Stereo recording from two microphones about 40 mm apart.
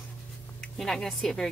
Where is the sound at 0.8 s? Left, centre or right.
Centre.